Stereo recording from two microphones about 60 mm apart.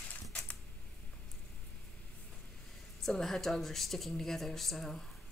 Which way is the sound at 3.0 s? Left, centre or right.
Centre.